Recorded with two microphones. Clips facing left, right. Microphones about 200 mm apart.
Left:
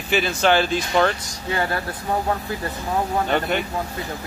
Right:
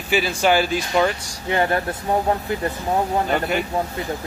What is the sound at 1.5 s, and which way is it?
Speech, 20° right (ahead or behind).